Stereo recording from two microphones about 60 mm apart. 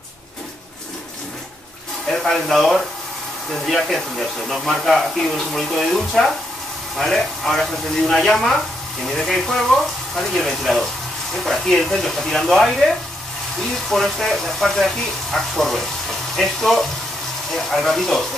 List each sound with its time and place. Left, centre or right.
2.2 s speech: centre